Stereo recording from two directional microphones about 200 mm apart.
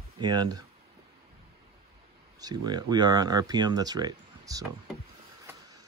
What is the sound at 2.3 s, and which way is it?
Speech, 20° right (ahead or behind).